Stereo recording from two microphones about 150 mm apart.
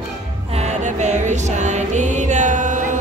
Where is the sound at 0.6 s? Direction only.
50° right (ahead or behind).